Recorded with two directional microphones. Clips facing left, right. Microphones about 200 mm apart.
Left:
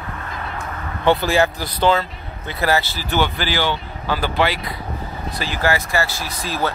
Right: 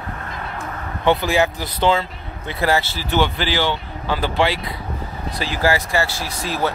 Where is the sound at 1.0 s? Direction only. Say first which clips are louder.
Left 1 dB; 15° right (ahead or behind).